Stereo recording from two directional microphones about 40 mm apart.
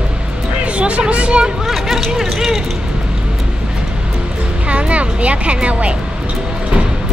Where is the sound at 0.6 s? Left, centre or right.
Right.